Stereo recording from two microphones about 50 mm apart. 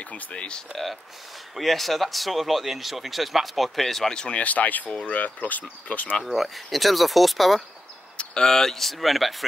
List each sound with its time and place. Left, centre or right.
0.0 s speech: left
1.5 s speech: centre
4.1 s speech: centre
4.4 s speech: left
6.2 s speech: centre
8.2 s speech: centre